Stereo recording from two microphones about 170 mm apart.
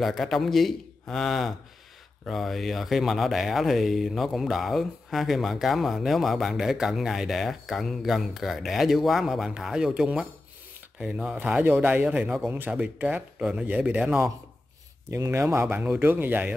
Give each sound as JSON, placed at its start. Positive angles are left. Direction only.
{"t": 0.0, "sound": "a man's voice", "side_deg": 0}